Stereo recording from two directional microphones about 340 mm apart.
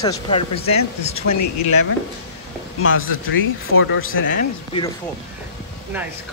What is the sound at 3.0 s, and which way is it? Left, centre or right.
Speech, left.